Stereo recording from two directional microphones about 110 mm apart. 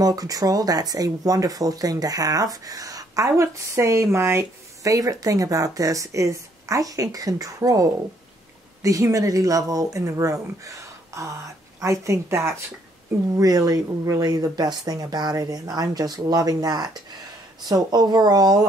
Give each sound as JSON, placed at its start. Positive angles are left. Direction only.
{"t": 0.0, "sound": "speech", "side_deg": -35}